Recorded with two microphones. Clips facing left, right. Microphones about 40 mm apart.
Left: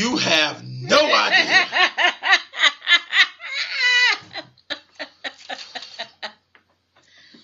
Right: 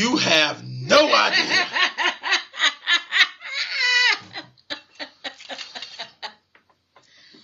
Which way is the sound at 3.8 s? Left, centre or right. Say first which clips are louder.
Left 2 dB; left.